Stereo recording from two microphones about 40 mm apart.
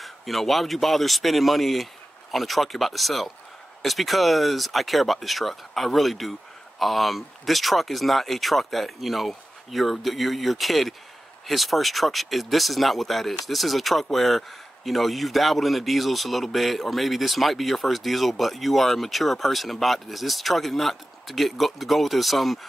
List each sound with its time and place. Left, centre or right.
0.0 s speech: centre